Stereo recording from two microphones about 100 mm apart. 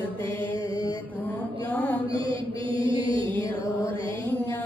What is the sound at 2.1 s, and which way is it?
Mantra, 60° right (ahead or behind).